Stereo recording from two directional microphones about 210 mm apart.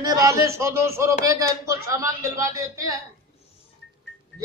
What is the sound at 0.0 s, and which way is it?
A man's voice, 15° right (ahead or behind).